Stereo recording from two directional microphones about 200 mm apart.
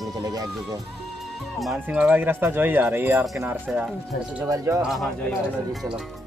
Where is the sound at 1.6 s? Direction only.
Centre (ahead or behind); by 4.8 s 15° right (ahead or behind).